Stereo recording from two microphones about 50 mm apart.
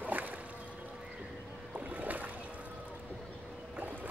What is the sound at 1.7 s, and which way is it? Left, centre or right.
Boat, right.